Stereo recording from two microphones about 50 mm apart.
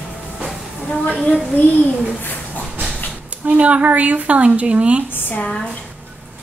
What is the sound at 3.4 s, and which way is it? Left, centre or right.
A woman's voice, right.